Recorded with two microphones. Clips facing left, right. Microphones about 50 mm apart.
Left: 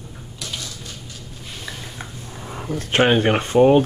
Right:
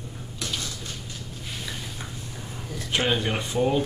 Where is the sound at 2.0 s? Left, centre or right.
Left.